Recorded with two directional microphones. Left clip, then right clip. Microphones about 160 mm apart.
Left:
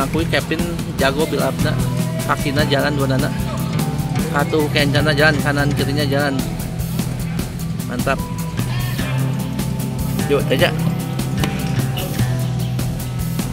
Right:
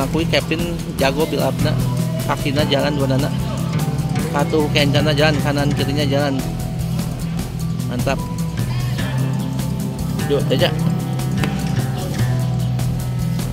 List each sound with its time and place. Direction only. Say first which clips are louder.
0.0 s speech: even; 20° right (ahead or behind)
4.3 s speech: even; 15° right (ahead or behind)
10.2 s speech: left 1 dB; 5° right (ahead or behind)